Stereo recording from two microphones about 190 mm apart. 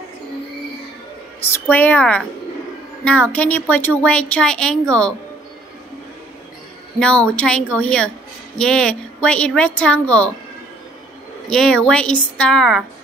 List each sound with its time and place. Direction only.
1.4 s a woman's voice: 10° left (ahead or behind)
7.0 s a woman's voice: 5° left (ahead or behind)
11.5 s a woman's voice: 5° left (ahead or behind)